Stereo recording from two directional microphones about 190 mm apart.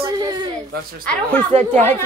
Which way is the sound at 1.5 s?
35° right (ahead or behind).